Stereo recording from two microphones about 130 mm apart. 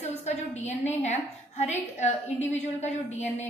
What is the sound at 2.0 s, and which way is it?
Speech, 60° left (ahead or behind).